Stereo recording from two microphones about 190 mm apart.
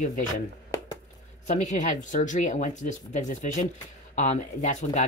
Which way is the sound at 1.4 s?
40° left (ahead or behind).